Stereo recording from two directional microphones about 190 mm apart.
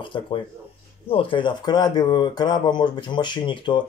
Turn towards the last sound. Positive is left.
turn(degrees=25)  # may be behind; listen again after turning